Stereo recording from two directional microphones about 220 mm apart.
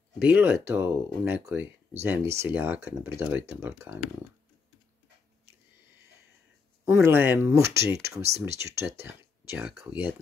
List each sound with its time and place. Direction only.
0.2 s speech: 10° right (ahead or behind)
6.8 s speech: 10° right (ahead or behind)